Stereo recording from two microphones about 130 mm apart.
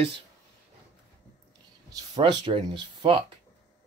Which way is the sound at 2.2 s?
40° right (ahead or behind).